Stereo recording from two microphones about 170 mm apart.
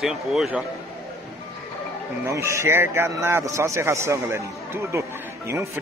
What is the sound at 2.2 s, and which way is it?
Speech, 15° right (ahead or behind).